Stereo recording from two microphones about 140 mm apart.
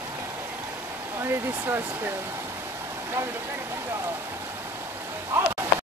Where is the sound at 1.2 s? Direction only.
15° right (ahead or behind).